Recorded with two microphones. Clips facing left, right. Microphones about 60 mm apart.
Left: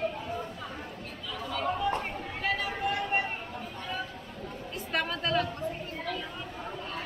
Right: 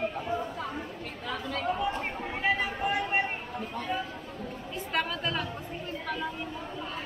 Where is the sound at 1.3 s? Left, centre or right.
Right.